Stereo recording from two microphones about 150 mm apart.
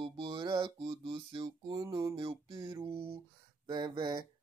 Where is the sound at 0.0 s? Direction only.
35° right (ahead or behind).